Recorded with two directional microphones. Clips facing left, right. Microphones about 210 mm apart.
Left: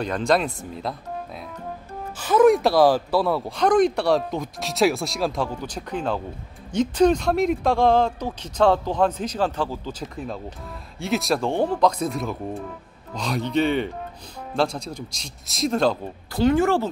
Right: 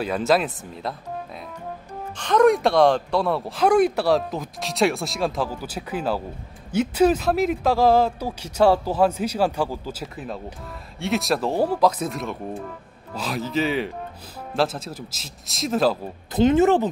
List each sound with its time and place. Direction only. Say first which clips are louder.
0.0 s speech: right 1 dB; 5° right (ahead or behind)
2.1 s speech: left 1 dB; 5° left (ahead or behind)
16.3 s speech: right 2 dB; 20° right (ahead or behind)